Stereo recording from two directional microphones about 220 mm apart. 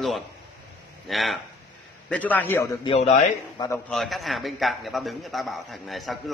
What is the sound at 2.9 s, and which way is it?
Speech, 30° left (ahead or behind).